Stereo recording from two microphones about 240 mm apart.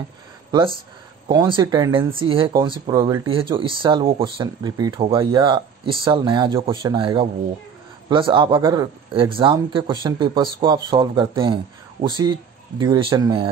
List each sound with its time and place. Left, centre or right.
0.5 s speech: right